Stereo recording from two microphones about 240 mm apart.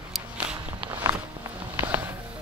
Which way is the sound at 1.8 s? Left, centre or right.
Centre.